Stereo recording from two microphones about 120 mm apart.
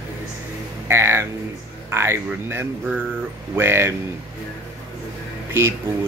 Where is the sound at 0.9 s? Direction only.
20° right (ahead or behind).